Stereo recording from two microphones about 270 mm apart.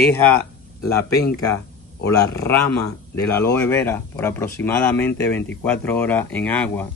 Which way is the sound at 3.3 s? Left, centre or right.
Centre.